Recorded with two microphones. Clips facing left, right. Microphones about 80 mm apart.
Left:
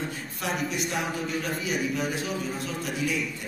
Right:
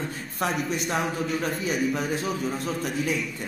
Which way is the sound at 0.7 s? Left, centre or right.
Right.